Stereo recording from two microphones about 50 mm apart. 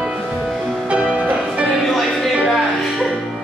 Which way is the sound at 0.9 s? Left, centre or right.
Right.